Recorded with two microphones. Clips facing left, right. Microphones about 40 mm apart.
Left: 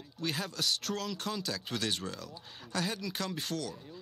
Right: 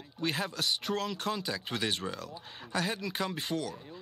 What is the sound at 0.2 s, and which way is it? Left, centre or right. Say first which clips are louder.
Speech: right 2 dB; centre.